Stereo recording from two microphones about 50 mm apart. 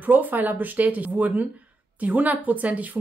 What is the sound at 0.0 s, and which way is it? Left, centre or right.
Speech, right.